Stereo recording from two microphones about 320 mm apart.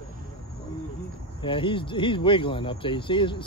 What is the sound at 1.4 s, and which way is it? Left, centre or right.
Speech, centre.